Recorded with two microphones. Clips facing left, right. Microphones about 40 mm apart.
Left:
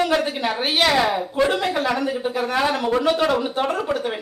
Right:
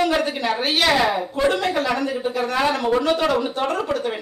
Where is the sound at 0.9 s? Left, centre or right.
Centre.